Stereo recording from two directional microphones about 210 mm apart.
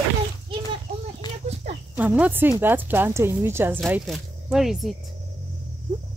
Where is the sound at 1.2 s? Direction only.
20° left (ahead or behind).